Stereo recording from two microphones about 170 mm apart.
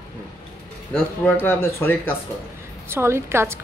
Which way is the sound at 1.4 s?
15° left (ahead or behind).